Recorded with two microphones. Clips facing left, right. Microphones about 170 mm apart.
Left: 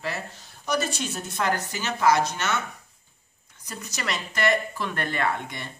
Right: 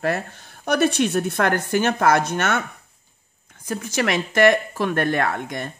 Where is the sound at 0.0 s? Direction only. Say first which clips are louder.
Right 9 dB; 55° right (ahead or behind).